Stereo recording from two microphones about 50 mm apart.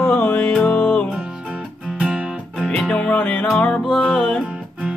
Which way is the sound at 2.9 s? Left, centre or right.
Left.